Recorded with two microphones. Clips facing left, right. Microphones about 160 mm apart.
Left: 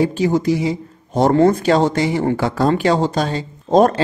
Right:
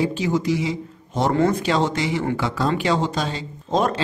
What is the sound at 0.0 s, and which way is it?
A man's voice, 45° left (ahead or behind).